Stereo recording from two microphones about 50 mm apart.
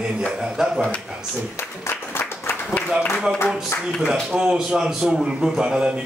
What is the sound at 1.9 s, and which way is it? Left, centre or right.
Applause, left.